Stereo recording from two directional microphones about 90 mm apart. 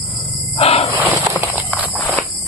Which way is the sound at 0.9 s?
20° right (ahead or behind).